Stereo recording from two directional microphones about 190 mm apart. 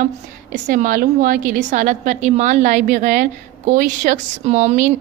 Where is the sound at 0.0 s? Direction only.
45° right (ahead or behind).